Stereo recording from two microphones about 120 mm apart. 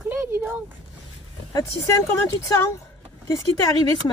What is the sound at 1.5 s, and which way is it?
Speech, 30° left (ahead or behind).